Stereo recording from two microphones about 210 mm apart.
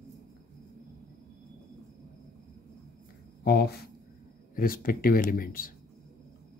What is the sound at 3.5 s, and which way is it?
Speech, 50° left (ahead or behind).